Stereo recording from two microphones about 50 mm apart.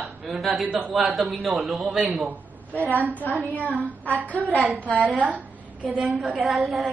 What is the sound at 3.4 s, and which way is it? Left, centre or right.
Speech, left.